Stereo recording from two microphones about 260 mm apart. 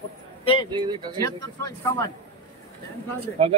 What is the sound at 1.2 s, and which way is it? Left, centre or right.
Speech, centre.